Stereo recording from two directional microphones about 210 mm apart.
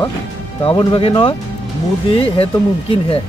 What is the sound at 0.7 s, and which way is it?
Speech, 25° left (ahead or behind).